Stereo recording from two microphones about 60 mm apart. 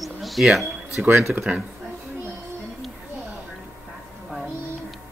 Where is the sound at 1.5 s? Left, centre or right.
Right.